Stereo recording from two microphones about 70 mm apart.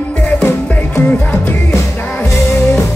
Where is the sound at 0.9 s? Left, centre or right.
Left.